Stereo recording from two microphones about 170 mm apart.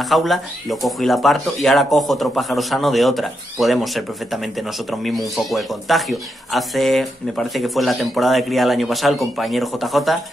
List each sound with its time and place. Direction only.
0.0 s speech: centre (ahead or behind)